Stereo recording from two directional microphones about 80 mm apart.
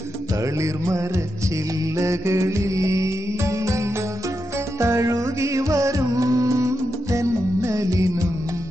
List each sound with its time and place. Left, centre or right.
2.0 s music: right